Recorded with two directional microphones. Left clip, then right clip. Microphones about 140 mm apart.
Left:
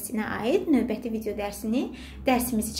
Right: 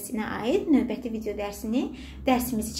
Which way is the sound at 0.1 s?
5° left (ahead or behind).